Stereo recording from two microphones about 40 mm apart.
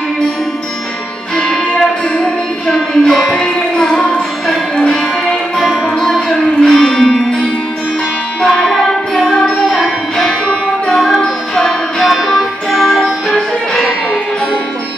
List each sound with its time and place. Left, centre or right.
2.1 s music: centre
5.6 s music: centre
6.0 s music: centre
8.4 s music: centre
11.1 s music: left
12.0 s music: centre